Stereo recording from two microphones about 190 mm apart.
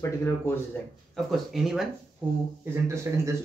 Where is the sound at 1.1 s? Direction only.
Centre (ahead or behind).